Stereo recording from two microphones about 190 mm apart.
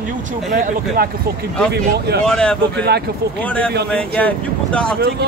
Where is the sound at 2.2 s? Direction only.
5° left (ahead or behind).